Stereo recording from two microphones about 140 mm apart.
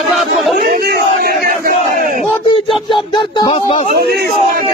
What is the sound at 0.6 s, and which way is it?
Battle cry, 90° right.